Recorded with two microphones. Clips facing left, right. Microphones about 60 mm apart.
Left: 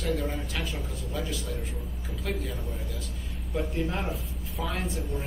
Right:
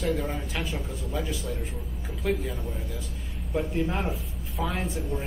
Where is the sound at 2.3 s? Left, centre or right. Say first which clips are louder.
Right 6 dB; centre.